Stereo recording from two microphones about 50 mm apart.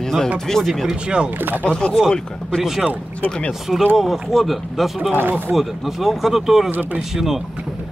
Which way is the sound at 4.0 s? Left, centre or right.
Centre.